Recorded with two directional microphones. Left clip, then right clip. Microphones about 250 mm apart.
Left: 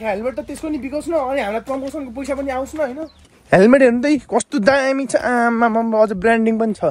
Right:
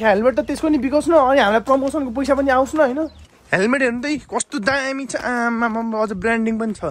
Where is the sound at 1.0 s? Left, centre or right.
Right.